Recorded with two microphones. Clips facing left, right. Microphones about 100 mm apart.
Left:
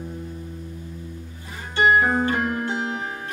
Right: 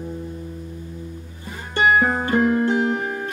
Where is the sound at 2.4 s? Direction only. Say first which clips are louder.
Right 7 dB; 20° right (ahead or behind).